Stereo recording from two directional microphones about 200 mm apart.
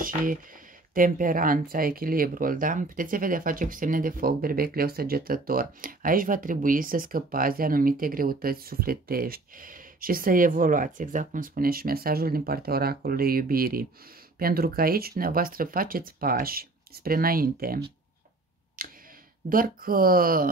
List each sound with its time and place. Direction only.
0.0 s speech: 45° right (ahead or behind)
18.8 s a sound: 45° right (ahead or behind)
19.5 s speech: 45° right (ahead or behind)